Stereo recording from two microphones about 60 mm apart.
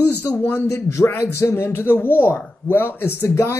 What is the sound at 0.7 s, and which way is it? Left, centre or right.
Speech, left.